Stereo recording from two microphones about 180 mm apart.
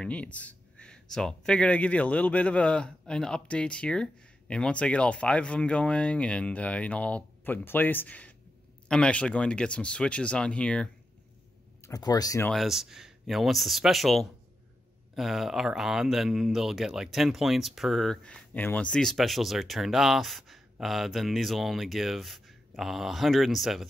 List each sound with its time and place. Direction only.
0.0 s speech: 5° left (ahead or behind)
11.8 s speech: 20° left (ahead or behind)
12.4 s speech: centre (ahead or behind)